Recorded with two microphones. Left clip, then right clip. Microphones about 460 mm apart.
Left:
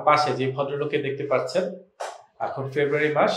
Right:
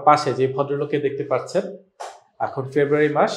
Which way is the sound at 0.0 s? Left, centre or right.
Right.